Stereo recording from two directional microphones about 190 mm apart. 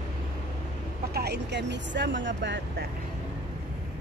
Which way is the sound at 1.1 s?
60° right (ahead or behind).